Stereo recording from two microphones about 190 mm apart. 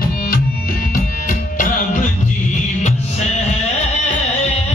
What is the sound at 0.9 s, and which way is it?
Music, 45° left (ahead or behind).